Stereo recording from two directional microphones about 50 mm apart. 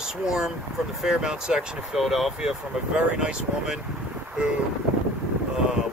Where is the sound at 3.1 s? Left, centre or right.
Centre.